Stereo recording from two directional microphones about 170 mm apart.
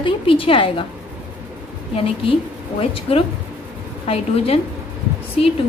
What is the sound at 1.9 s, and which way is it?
A woman's voice, 35° left (ahead or behind).